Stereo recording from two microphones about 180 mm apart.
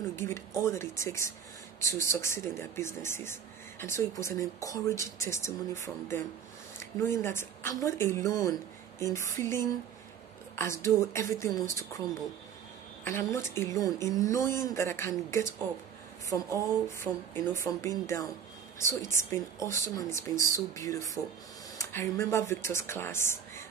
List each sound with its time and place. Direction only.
0.1 s speech: 15° left (ahead or behind)
13.0 s speech: 15° left (ahead or behind)